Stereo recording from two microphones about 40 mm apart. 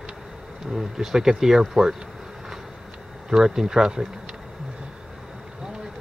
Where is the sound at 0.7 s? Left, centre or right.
Centre.